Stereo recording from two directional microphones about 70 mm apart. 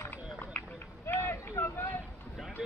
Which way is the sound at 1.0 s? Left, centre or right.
Left.